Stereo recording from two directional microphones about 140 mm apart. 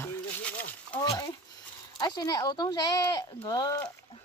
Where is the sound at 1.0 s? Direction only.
30° left (ahead or behind).